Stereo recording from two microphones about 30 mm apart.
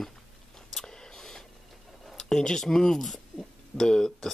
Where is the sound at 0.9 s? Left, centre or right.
Left.